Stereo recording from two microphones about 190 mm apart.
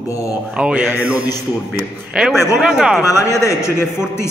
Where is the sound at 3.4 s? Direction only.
15° left (ahead or behind).